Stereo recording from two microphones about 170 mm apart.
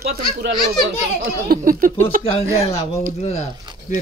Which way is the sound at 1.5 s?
55° right (ahead or behind).